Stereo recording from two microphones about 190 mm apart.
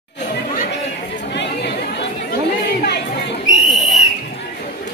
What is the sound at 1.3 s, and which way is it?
Chatter, 65° left (ahead or behind).